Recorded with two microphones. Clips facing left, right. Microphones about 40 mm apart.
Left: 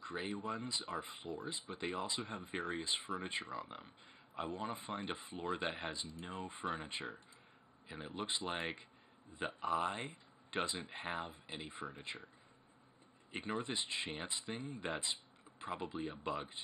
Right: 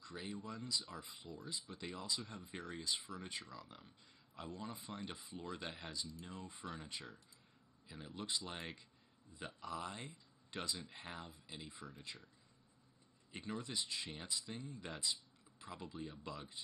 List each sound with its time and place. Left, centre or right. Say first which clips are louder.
0.0 s speech: left 6 dB; left
13.3 s speech: left 5 dB; left